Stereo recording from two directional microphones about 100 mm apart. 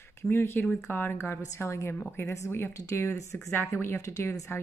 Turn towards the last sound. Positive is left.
turn(degrees=25)  # may be behind; listen again after turning